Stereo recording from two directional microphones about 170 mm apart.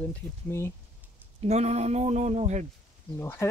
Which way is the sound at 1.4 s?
40° right (ahead or behind).